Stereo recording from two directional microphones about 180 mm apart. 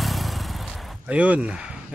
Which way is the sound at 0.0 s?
Centre (ahead or behind).